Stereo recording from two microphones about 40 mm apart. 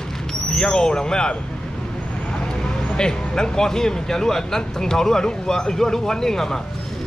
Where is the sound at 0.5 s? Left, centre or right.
Centre.